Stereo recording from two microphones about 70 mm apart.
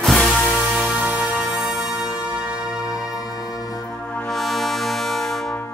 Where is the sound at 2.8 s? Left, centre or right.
Left.